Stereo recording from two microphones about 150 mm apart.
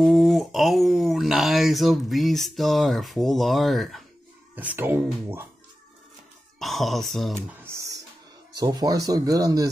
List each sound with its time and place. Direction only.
0.0 s speech: centre (ahead or behind)
4.6 s speech: 15° right (ahead or behind)
6.6 s speech: centre (ahead or behind)
7.3 s a sound: 20° right (ahead or behind)
8.5 s speech: 25° right (ahead or behind)